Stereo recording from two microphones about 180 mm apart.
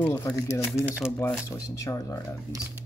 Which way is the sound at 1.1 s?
5° left (ahead or behind).